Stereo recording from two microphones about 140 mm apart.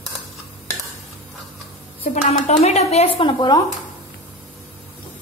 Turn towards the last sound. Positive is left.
turn(degrees=35)  # may be behind; listen again after turning